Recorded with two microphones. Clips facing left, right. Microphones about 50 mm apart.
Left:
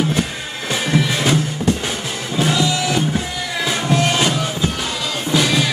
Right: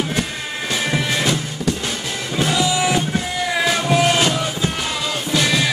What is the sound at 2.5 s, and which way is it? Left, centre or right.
Music, centre.